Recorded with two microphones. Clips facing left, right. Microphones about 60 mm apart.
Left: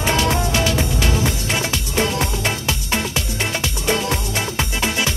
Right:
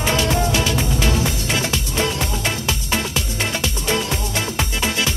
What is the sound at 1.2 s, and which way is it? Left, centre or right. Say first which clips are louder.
Music: even; left.